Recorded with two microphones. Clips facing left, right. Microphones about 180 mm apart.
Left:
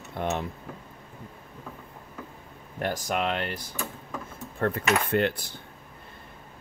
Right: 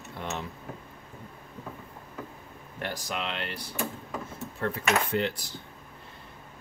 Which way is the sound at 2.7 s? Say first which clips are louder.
Left 6 dB; 45° left (ahead or behind).